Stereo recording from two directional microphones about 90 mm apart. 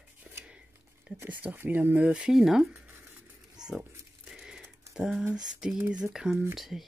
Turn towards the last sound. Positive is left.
turn(degrees=-5)  # may be behind; listen again after turning